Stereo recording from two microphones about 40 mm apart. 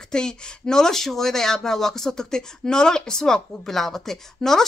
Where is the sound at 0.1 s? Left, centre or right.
Centre.